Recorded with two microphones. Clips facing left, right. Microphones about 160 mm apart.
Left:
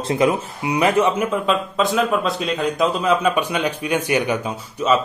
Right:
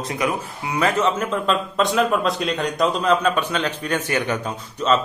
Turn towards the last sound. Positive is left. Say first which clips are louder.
# left 1 dB
turn(degrees=10)  # may be behind; listen again after turning